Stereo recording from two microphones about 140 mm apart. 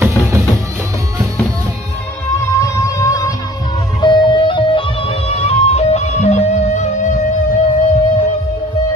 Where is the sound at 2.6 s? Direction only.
25° left (ahead or behind).